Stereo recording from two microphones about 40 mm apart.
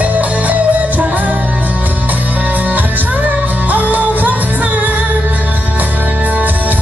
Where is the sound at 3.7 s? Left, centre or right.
Right.